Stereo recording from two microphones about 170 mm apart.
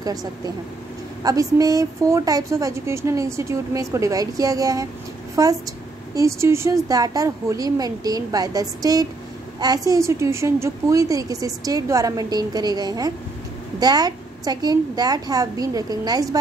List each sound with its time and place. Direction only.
0.0 s a woman's voice: 20° right (ahead or behind)